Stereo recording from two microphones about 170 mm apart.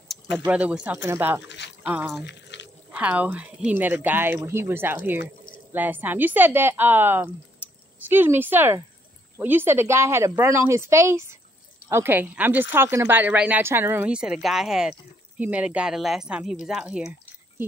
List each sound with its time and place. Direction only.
0.5 s speech: 10° right (ahead or behind)
1.5 s a sound: 90° left
1.9 s speech: 10° right (ahead or behind)
2.2 s drip: 85° left
2.9 s speech: 10° right (ahead or behind)